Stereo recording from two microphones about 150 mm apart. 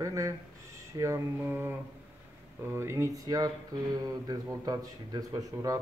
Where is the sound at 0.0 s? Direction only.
20° right (ahead or behind).